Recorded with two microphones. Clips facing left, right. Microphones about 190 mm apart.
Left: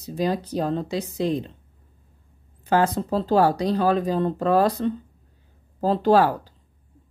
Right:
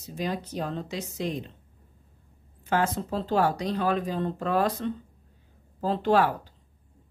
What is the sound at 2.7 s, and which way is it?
Speech, 35° left (ahead or behind).